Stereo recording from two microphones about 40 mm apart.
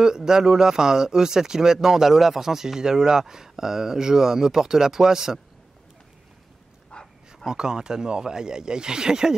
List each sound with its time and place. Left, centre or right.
0.0 s a man's voice: centre
6.9 s bow-wow: left
7.4 s speech: centre